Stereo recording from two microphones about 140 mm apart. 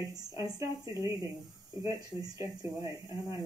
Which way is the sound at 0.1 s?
25° right (ahead or behind).